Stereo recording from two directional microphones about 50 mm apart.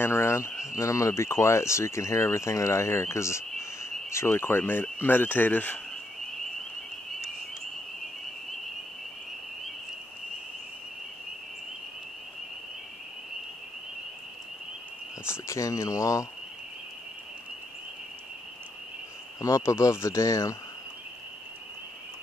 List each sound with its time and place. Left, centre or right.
0.0 s speech: left
0.6 s speech: left
15.2 s speech: left
19.4 s speech: left